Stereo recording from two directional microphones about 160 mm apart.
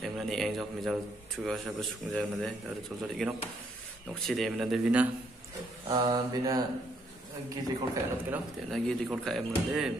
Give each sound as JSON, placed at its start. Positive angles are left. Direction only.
{"t": 0.0, "sound": "a man's voice", "side_deg": 0}
{"t": 5.9, "sound": "speech", "side_deg": -25}
{"t": 8.6, "sound": "a man's voice", "side_deg": 0}